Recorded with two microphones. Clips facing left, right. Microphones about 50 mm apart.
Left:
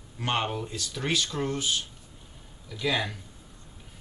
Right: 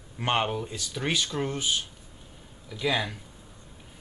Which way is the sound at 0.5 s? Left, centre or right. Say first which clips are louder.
Right 1 dB; centre.